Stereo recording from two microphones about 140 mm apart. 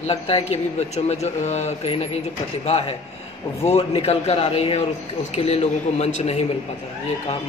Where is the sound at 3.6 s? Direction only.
50° left (ahead or behind).